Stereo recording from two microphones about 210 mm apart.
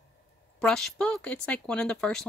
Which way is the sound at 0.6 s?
5° left (ahead or behind).